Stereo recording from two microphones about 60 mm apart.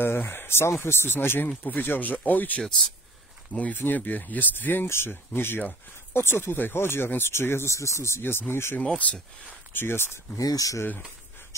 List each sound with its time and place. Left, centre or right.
0.0 s speech: left
3.7 s speech: left
4.8 s speech: left
7.7 s speech: left
8.7 s speech: left
9.7 s speech: left
10.3 s speech: left